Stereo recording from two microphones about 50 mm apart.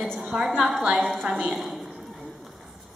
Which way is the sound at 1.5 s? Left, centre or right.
Centre.